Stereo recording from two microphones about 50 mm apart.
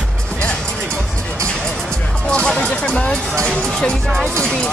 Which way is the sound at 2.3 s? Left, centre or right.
Left.